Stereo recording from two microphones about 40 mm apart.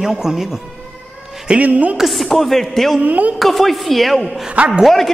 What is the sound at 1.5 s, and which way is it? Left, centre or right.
Speech, right.